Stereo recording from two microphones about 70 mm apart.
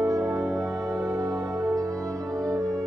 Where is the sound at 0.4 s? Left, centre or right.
Centre.